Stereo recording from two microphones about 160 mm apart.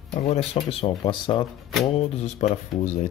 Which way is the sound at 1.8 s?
40° left (ahead or behind).